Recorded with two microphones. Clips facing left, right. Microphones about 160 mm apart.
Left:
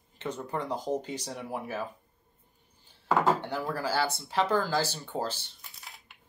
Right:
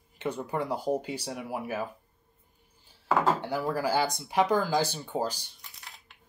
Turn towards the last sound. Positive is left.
turn(degrees=0)  # may be behind; listen again after turning